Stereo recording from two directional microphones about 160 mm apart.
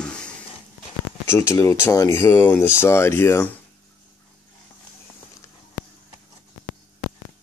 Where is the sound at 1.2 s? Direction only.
15° left (ahead or behind).